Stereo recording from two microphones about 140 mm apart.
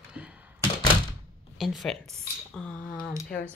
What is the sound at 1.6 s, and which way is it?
Speech, centre (ahead or behind).